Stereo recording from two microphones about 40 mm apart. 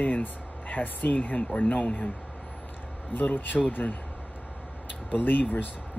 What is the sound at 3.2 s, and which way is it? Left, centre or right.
Speech, left.